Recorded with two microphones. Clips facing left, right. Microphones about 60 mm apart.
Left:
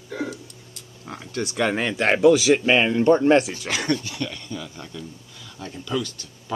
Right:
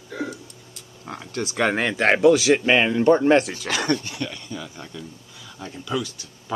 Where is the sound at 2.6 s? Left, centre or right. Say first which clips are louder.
Right 1 dB; centre.